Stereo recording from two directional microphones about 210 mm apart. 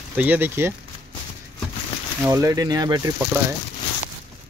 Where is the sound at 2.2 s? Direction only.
15° right (ahead or behind).